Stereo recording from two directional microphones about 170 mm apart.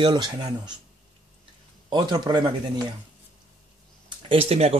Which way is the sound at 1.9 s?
25° right (ahead or behind).